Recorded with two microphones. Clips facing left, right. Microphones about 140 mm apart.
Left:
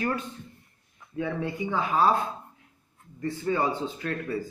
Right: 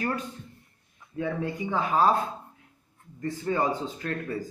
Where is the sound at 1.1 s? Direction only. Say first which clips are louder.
Even; 35° right (ahead or behind).